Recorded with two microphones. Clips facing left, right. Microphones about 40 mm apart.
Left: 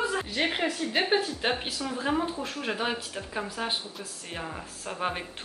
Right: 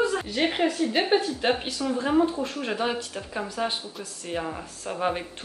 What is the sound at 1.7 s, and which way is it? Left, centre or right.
Speech, left.